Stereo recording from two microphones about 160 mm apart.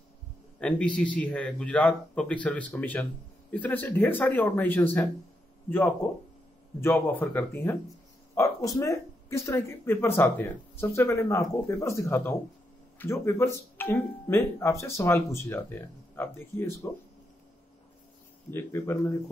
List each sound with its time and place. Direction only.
0.6 s speech: 5° left (ahead or behind)
6.8 s speech: 15° left (ahead or behind)
18.5 s speech: 15° left (ahead or behind)